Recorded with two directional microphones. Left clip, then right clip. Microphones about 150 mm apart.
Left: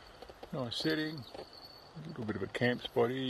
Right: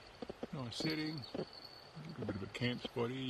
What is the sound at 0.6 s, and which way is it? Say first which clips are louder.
Speech: left 7 dB; 5° left (ahead or behind).